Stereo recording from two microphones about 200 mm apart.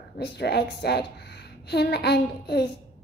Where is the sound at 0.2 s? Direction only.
55° left (ahead or behind).